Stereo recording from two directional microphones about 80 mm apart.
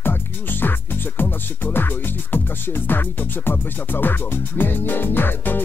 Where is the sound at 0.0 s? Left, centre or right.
Left.